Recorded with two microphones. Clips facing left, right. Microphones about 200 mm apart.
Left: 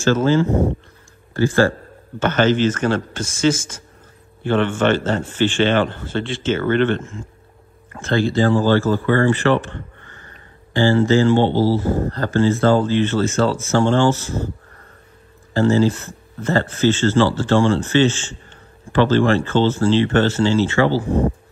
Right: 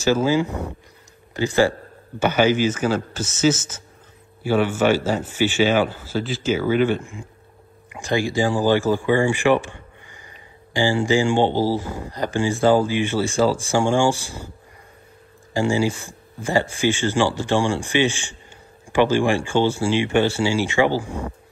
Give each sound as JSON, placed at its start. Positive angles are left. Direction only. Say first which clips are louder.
{"t": 0.0, "sound": "a man's voice", "louder": "left 2 dB", "side_deg": -10}
{"t": 0.5, "sound": "speech", "louder": "left 11 dB", "side_deg": 35}
{"t": 1.3, "sound": "a man's voice", "louder": "left 2 dB", "side_deg": -15}
{"t": 11.8, "sound": "speech", "louder": "left 11 dB", "side_deg": 45}
{"t": 12.1, "sound": "a man's voice", "louder": "left 2 dB", "side_deg": -15}
{"t": 15.5, "sound": "a man's voice", "louder": "left 5 dB", "side_deg": -15}